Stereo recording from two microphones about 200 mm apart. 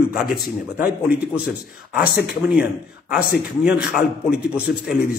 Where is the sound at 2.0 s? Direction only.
55° left (ahead or behind).